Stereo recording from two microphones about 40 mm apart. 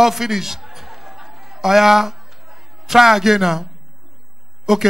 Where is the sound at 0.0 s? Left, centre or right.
Centre.